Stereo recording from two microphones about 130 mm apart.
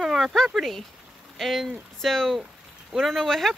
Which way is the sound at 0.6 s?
Centre (ahead or behind).